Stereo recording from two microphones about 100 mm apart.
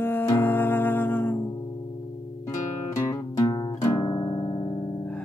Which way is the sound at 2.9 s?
35° left (ahead or behind).